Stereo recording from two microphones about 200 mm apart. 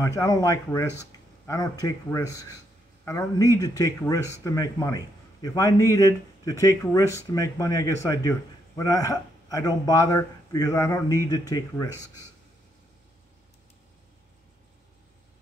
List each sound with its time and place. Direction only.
0.0 s speech: 15° left (ahead or behind)